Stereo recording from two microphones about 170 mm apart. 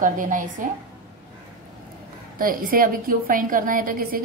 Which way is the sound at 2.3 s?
55° right (ahead or behind).